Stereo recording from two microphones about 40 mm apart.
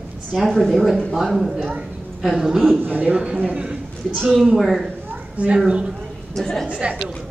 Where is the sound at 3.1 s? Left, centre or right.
Centre.